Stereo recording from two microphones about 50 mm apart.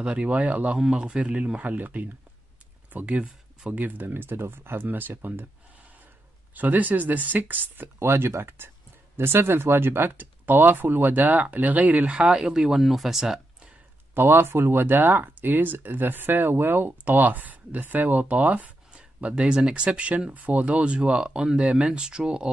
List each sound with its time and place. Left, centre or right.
0.0 s speech: right
0.7 s speech: centre; by 4.1 s right
4.1 s speech: right
6.5 s speech: right
8.0 s speech: right
12.2 s speech: centre
14.1 s speech: right; by 22.5 s centre